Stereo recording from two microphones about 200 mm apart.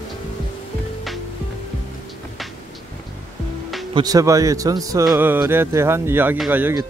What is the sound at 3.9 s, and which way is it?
Speech, 20° right (ahead or behind).